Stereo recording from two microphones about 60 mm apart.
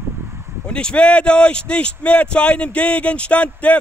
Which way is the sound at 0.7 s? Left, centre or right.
Centre.